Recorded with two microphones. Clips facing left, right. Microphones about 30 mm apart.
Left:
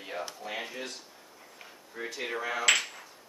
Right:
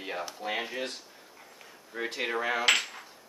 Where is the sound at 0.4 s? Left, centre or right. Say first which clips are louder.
Right 4 dB; right.